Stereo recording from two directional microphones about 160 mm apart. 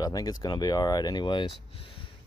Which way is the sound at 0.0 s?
25° left (ahead or behind).